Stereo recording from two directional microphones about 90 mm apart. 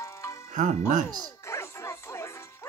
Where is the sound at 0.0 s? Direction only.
35° left (ahead or behind).